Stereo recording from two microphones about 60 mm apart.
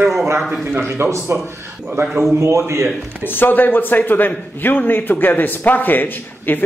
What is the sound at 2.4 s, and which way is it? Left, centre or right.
Speech, right.